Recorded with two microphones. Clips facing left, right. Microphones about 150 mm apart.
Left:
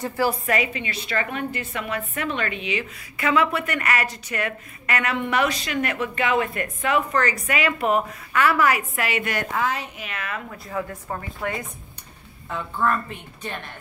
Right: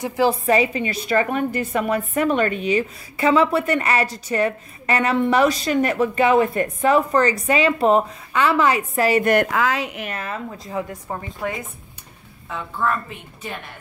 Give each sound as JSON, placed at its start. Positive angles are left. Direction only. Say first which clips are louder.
{"t": 0.0, "sound": "a woman's voice", "louder": "right 4 dB", "side_deg": -15}
{"t": 0.3, "sound": "a woman's voice", "louder": "right 6 dB", "side_deg": -30}
{"t": 3.2, "sound": "a woman's voice", "louder": "right 5 dB", "side_deg": -30}
{"t": 9.3, "sound": "a woman's voice", "louder": "right 7 dB", "side_deg": -75}
{"t": 10.0, "sound": "a woman's voice", "louder": "right 3 dB", "side_deg": -35}
{"t": 10.7, "sound": "a woman's voice", "louder": "right 1 dB", "side_deg": -15}
{"t": 12.4, "sound": "a woman's voice", "louder": "even", "side_deg": 0}